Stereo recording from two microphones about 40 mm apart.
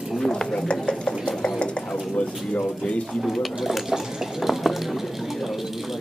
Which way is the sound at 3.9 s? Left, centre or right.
Centre.